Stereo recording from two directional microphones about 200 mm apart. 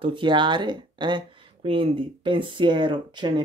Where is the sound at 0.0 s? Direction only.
25° right (ahead or behind).